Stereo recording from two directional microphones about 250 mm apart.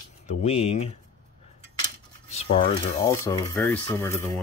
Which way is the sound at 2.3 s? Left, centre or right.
Left.